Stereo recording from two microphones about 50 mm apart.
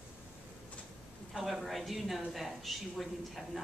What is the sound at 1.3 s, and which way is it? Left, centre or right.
A woman's voice, centre.